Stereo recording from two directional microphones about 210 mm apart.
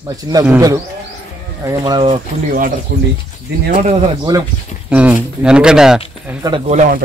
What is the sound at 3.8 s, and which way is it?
Speech, 20° right (ahead or behind).